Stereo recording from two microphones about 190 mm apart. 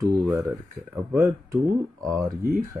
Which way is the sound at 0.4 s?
Centre (ahead or behind).